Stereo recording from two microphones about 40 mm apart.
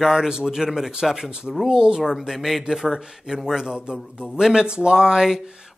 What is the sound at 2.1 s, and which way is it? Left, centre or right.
A man's voice, centre.